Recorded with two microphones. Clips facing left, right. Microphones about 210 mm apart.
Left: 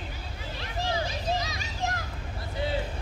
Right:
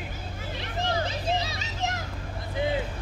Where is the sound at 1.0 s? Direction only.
25° right (ahead or behind).